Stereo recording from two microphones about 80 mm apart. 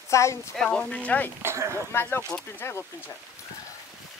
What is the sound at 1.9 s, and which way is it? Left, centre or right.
Speech, left.